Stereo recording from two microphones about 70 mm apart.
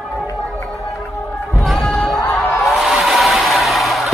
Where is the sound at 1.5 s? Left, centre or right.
Centre.